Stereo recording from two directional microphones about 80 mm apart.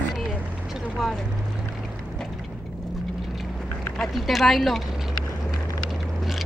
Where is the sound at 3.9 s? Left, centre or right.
Centre.